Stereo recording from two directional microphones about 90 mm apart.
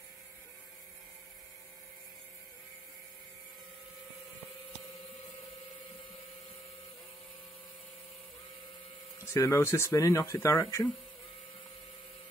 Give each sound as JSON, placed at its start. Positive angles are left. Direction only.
{"t": 9.2, "sound": "speech", "side_deg": 35}